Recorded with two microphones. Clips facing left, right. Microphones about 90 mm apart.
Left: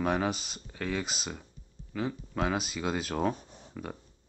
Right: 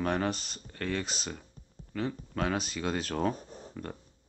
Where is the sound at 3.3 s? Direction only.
40° right (ahead or behind).